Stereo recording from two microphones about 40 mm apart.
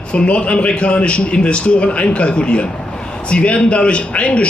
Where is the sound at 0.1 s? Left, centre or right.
Left.